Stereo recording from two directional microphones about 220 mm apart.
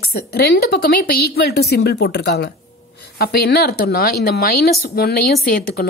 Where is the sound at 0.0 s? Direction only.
45° left (ahead or behind).